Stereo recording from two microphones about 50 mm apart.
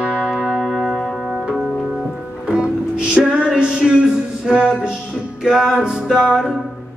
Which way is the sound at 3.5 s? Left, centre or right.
Centre.